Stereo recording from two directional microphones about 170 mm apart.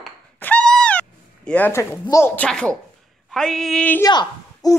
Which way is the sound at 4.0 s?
25° left (ahead or behind).